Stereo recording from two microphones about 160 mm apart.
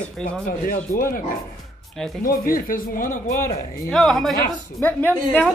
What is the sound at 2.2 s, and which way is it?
Speech, 65° left (ahead or behind).